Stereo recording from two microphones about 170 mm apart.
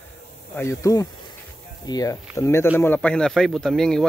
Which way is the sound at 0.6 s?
20° left (ahead or behind).